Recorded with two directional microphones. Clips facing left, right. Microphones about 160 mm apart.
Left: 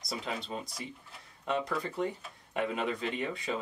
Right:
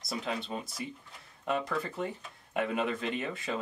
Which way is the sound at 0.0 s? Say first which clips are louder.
Right 2 dB; centre (ahead or behind).